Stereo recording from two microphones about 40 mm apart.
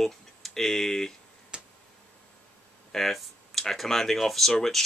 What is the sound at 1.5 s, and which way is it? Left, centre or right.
Tick-tock, right.